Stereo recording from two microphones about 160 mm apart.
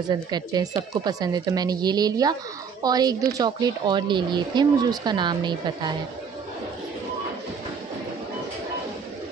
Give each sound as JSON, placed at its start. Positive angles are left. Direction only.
{"t": 0.3, "sound": "a woman's voice", "side_deg": -25}